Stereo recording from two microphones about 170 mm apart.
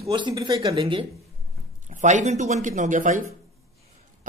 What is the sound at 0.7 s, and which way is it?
Speech, 35° right (ahead or behind).